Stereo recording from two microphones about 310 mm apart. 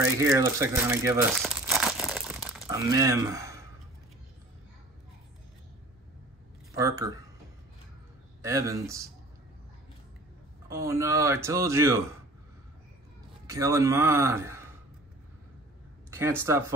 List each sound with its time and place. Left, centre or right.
0.0 s crumpling: centre
6.7 s speech: centre
8.4 s speech: centre
10.7 s speech: centre
13.5 s speech: centre
16.1 s speech: centre